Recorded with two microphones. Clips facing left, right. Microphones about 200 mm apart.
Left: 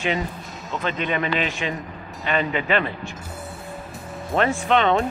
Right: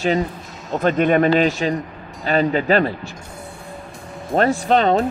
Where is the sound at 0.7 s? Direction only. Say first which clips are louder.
Right 9 dB; 50° right (ahead or behind).